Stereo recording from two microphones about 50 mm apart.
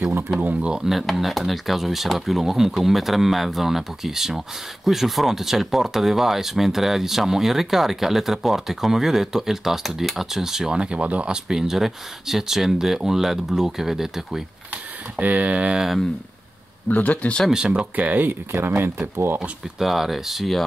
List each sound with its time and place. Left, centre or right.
0.4 s speech: right
0.8 s speech: centre; by 11.3 s right
11.3 s speech: centre
14.7 s speech: right
15.7 s speech: centre
16.9 s speech: left
17.5 s speech: centre
17.9 s speech: right
19.8 s speech: centre